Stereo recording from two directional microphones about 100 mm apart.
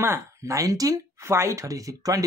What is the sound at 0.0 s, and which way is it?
Speech, 30° right (ahead or behind).